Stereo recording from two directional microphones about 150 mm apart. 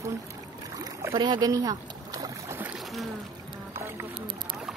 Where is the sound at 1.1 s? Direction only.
30° right (ahead or behind).